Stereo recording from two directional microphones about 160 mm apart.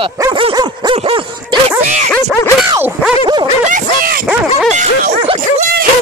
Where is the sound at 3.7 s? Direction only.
65° right (ahead or behind).